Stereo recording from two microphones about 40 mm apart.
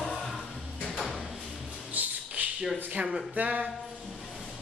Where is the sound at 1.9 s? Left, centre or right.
Right.